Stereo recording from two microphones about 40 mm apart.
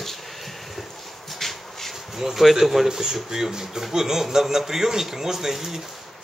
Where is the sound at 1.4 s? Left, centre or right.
Centre.